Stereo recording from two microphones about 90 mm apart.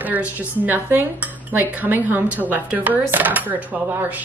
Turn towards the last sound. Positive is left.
turn(degrees=-20)  # may be behind; listen again after turning